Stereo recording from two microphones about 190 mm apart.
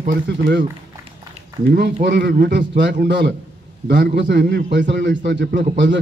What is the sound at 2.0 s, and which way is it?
A man's voice, 65° right (ahead or behind).